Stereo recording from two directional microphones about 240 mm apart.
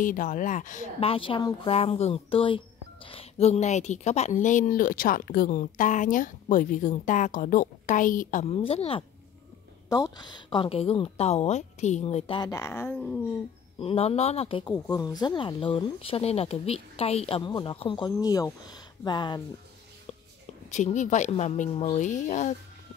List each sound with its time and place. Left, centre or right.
0.0 s speech: left; by 13.2 s centre
13.7 s speech: left
20.7 s speech: left